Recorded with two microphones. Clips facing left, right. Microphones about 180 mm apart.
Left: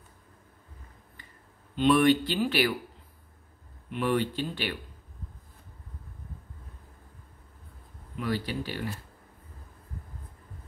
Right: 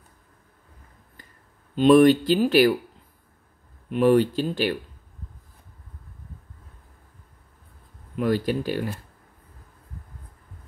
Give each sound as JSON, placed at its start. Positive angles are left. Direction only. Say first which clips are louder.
{"t": 1.8, "sound": "speech", "louder": "right 7 dB", "side_deg": -45}
{"t": 3.9, "sound": "speech", "louder": "right 9 dB", "side_deg": -40}
{"t": 8.2, "sound": "speech", "louder": "right 8 dB", "side_deg": -45}